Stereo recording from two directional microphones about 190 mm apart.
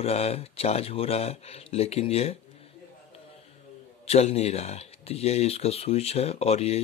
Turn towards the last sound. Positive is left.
turn(degrees=35)  # may be behind; listen again after turning